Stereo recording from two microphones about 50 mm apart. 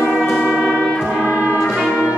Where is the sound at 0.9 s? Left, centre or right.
Centre.